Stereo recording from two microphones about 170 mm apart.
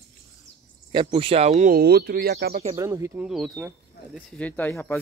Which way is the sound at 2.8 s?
15° right (ahead or behind).